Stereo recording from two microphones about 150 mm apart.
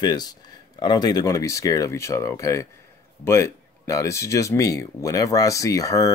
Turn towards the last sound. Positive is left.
turn(degrees=25)  # may be behind; listen again after turning